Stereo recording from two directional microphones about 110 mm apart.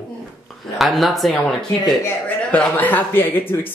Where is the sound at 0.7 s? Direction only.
Centre (ahead or behind).